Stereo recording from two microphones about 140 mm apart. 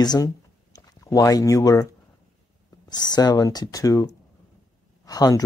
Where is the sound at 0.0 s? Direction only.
30° left (ahead or behind).